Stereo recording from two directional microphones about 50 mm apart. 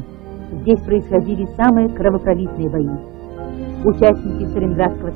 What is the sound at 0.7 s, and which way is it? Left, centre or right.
Speech, centre.